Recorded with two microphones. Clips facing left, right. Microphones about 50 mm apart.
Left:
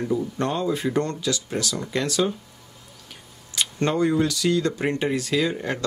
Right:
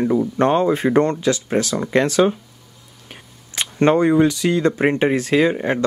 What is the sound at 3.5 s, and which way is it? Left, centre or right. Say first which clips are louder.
Speech: right 7 dB; right.